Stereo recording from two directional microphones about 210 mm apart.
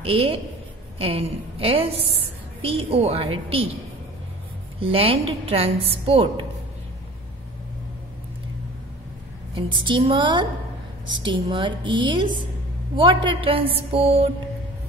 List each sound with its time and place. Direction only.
0.0 s a woman's voice: 25° right (ahead or behind)
4.7 s a woman's voice: 25° right (ahead or behind)
9.8 s a woman's voice: 25° right (ahead or behind)